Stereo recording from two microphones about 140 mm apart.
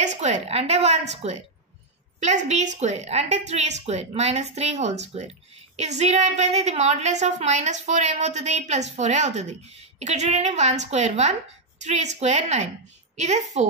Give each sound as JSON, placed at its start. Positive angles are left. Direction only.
{"t": 0.0, "sound": "a woman's voice", "side_deg": -55}